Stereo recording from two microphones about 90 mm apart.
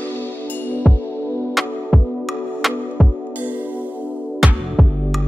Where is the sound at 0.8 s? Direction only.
Centre (ahead or behind).